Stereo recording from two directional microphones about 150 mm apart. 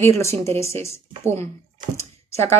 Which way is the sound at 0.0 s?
20° left (ahead or behind).